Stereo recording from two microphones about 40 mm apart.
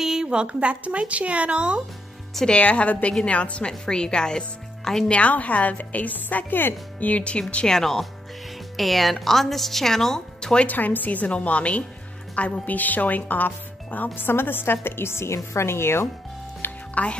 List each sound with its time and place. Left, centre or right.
0.0 s a woman's voice: centre; by 1.8 s right
2.4 s speech: left
3.8 s speech: left
5.1 s speech: left
7.1 s speech: left
7.6 s a woman's voice: centre
10.7 s speech: left
14.1 s a woman's voice: left
16.9 s speech: left